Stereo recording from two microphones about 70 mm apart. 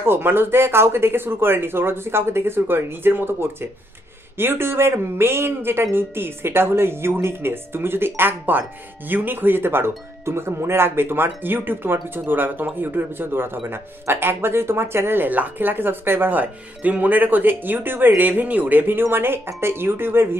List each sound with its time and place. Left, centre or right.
0.0 s speech: right